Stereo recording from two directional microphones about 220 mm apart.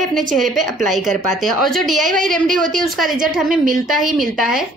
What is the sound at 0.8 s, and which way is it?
A woman's voice, centre (ahead or behind).